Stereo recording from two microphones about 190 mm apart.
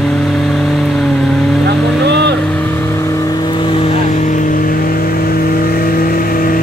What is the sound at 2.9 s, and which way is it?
Vehicle, 15° left (ahead or behind).